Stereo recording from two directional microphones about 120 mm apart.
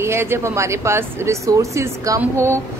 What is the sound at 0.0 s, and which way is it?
A woman's voice, 20° right (ahead or behind).